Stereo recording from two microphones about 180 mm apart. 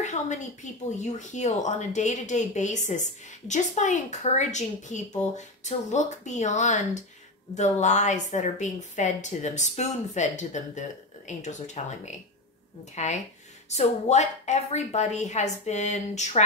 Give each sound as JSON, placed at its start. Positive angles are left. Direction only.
{"t": 0.0, "sound": "a woman's voice", "side_deg": 40}